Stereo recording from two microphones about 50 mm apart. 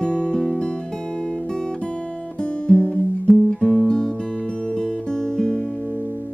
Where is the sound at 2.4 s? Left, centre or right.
Centre.